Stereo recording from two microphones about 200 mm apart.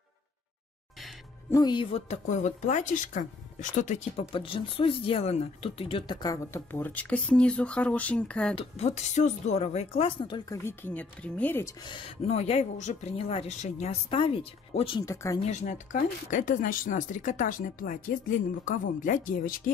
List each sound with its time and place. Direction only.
1.5 s speech: 20° left (ahead or behind); by 8.5 s 5° left (ahead or behind)
8.5 s speech: 30° left (ahead or behind); by 11.7 s 10° left (ahead or behind)
11.8 s speech: 25° left (ahead or behind)
15.0 s speech: 20° left (ahead or behind)
15.4 s speech: 35° left (ahead or behind)